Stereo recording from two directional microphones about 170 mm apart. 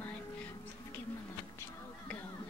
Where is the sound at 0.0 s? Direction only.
10° left (ahead or behind).